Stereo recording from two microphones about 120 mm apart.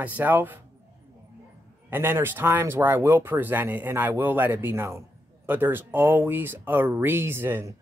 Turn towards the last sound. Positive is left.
turn(degrees=-20)  # may be behind; listen again after turning